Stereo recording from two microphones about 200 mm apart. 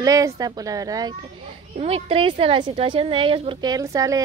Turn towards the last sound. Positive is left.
turn(degrees=-15)  # may be behind; listen again after turning